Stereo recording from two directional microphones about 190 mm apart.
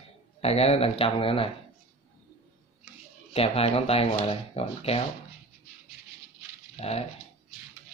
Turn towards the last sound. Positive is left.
turn(degrees=35)  # may be behind; listen again after turning